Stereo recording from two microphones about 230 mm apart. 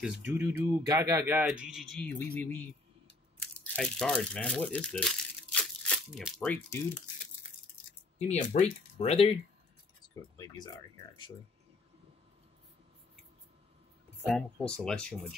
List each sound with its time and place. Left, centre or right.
0.0 s speech: centre
8.3 s speech: left
14.2 s speech: centre